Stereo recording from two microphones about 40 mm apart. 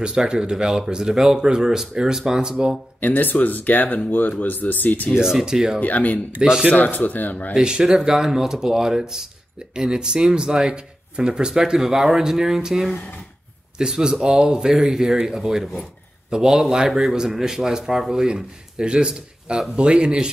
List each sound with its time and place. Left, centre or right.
0.3 s speech: right
3.0 s speech: left
5.2 s speech: centre
5.8 s speech: left
7.5 s speech: centre